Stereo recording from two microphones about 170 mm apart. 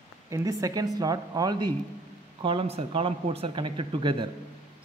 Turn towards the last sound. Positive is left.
turn(degrees=-30)  # may be behind; listen again after turning